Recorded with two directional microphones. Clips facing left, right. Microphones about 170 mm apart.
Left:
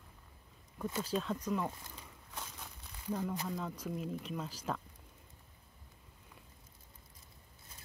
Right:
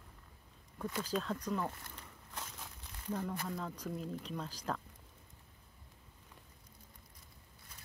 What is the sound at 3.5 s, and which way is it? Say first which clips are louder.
Speech: left 1 dB; 5° left (ahead or behind).